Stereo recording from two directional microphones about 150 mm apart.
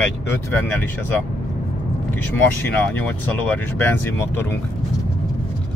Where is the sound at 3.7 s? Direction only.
15° left (ahead or behind).